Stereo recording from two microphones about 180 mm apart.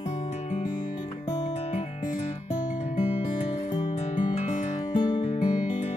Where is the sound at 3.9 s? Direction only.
40° left (ahead or behind).